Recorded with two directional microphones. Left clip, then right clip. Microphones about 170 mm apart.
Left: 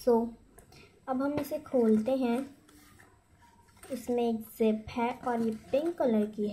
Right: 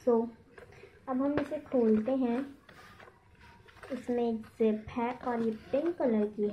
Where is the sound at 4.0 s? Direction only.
25° left (ahead or behind).